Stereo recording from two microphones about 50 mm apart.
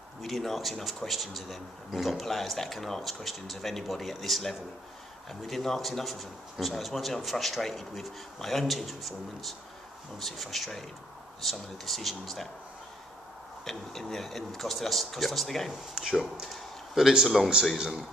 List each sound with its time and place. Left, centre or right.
0.2 s speech: centre
13.7 s speech: centre
15.9 s speech: centre